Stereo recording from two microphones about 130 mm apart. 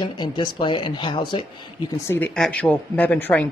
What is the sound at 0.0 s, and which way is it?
Speech, 35° left (ahead or behind).